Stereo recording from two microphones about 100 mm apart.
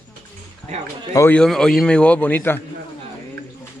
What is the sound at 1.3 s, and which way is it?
A man's voice, 10° left (ahead or behind).